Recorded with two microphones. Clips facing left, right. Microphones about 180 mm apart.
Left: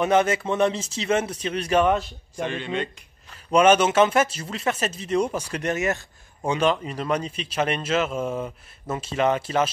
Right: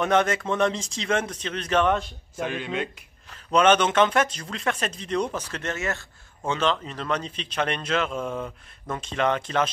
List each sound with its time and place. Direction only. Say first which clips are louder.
0.0 s speech: left 2 dB; 5° left (ahead or behind)
2.3 s speech: left 1 dB; 5° right (ahead or behind)
3.3 s speech: left 2 dB; 10° left (ahead or behind)